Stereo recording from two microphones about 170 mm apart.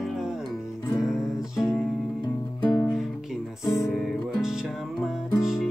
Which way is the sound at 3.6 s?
15° left (ahead or behind).